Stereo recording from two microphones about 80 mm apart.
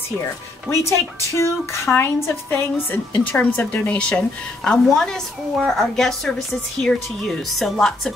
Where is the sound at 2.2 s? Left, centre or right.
Left.